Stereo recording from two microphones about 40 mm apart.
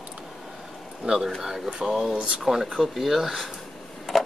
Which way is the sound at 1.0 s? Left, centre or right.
Right.